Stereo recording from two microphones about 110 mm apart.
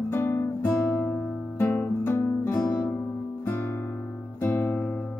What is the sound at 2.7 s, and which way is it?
Guitar, 20° left (ahead or behind).